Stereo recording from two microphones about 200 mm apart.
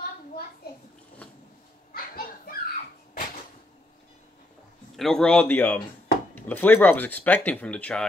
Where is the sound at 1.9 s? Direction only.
45° left (ahead or behind).